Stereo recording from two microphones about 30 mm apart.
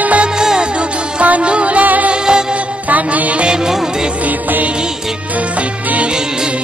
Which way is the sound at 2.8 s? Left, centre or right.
Right.